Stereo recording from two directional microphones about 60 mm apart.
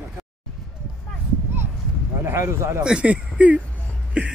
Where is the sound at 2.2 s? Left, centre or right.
Right.